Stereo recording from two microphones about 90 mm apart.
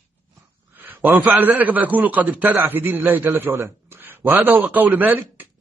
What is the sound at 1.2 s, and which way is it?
A man's voice, 20° right (ahead or behind).